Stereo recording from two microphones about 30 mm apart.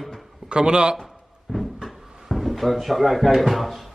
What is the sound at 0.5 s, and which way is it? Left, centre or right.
Speech, right.